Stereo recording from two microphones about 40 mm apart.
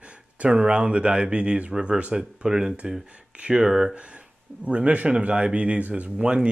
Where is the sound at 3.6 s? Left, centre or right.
Centre.